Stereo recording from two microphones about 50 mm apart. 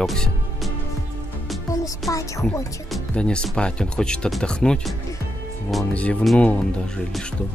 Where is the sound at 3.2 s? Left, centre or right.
Centre.